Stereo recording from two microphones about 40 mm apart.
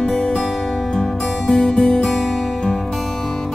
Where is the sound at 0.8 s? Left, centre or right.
Centre.